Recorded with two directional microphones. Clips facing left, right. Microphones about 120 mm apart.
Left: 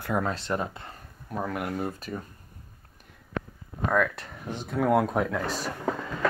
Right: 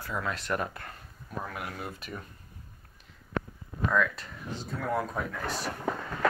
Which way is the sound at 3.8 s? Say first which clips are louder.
Left 2 dB; 55° left (ahead or behind).